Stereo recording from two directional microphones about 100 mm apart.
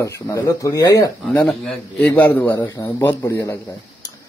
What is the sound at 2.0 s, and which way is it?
A man's voice, 20° left (ahead or behind).